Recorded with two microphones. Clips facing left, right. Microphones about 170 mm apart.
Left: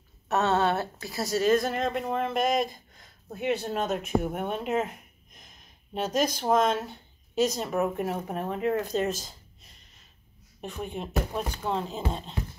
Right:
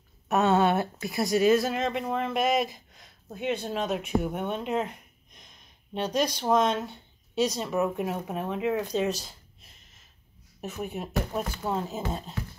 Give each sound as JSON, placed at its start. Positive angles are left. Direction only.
{"t": 0.3, "sound": "a woman's voice", "side_deg": -10}